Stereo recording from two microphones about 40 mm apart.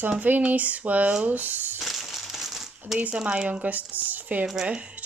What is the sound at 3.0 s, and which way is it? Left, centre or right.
Speech, right.